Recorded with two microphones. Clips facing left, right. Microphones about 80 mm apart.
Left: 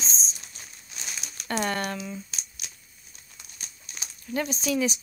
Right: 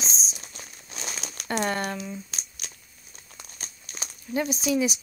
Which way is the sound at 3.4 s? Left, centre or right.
Right.